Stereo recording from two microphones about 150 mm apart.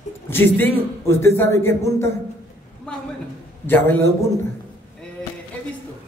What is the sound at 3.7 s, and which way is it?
Speech, 15° left (ahead or behind).